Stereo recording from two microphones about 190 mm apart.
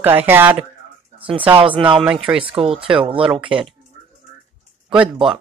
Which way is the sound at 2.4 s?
30° right (ahead or behind).